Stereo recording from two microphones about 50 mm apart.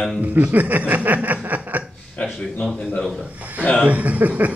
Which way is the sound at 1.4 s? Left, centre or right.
Right.